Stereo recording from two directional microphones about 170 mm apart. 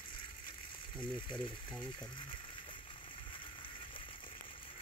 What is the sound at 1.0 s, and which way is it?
Speech, 30° left (ahead or behind).